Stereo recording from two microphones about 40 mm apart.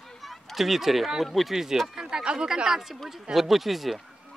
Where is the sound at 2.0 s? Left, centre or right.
Right.